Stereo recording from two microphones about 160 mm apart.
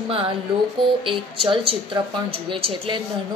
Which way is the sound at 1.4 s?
30° right (ahead or behind).